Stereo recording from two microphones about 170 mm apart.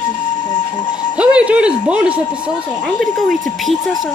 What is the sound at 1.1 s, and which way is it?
Speech, 5° right (ahead or behind).